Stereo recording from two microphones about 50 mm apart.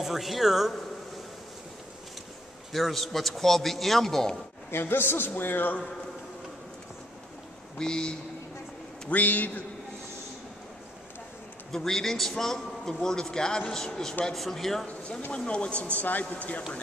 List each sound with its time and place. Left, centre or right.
0.0 s a man's voice: centre
2.7 s a man's voice: centre
4.6 s a man's voice: left
7.7 s speech: centre
9.1 s a man's voice: left
11.7 s a man's voice: centre
14.9 s speech: left